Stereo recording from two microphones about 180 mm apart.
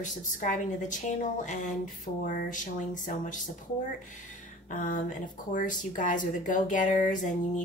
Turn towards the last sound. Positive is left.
turn(degrees=45)  # may be behind; listen again after turning